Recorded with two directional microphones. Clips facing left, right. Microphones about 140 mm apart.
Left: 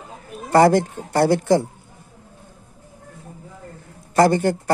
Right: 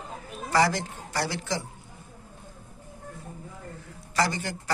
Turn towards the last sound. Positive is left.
turn(degrees=50)  # may be behind; listen again after turning